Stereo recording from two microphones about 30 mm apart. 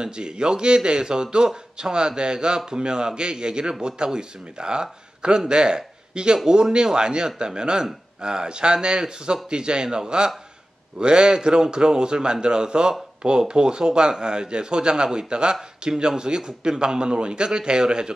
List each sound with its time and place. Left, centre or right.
0.0 s a man's voice: right